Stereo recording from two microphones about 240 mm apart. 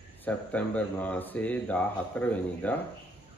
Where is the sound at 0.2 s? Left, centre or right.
Centre.